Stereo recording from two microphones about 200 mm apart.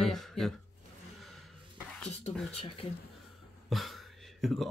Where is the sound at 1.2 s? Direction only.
Centre (ahead or behind).